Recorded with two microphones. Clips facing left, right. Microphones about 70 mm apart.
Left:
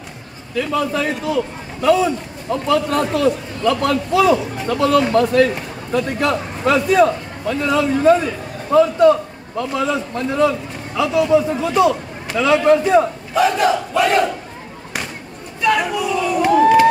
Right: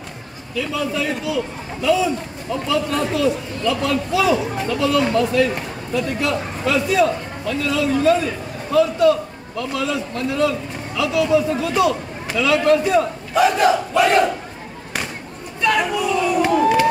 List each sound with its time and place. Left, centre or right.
0.6 s a man's voice: left
13.3 s battle cry: centre
15.6 s a sound: centre